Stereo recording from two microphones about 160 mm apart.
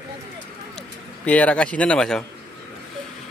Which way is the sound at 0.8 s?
10° left (ahead or behind).